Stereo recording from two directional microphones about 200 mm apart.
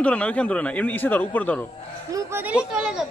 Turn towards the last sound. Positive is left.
turn(degrees=-5)  # may be behind; listen again after turning